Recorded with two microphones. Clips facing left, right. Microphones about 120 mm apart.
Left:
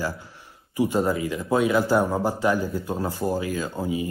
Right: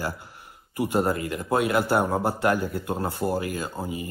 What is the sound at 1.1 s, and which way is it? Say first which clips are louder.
Speech: left 1 dB; 55° right (ahead or behind).